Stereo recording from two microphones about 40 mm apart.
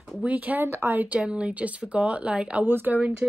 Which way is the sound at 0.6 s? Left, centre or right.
Right.